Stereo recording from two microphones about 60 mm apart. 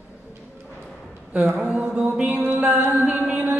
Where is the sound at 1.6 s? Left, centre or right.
Right.